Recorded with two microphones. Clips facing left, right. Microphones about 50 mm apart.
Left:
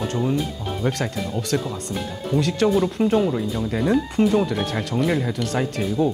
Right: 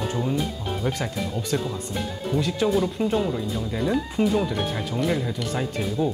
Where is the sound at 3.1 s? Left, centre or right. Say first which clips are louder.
Left 4 dB; centre.